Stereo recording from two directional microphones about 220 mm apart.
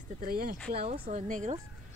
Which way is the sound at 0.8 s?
30° right (ahead or behind).